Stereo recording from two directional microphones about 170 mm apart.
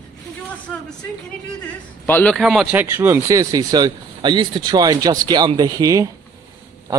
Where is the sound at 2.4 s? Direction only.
5° right (ahead or behind).